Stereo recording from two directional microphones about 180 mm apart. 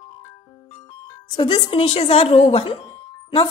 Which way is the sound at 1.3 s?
30° left (ahead or behind).